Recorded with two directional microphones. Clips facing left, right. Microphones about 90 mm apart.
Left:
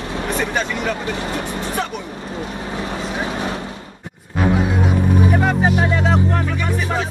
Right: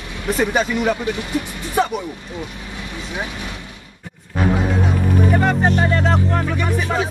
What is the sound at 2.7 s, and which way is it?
Vehicle, 40° left (ahead or behind).